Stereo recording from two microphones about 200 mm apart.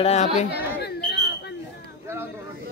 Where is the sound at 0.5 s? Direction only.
55° left (ahead or behind).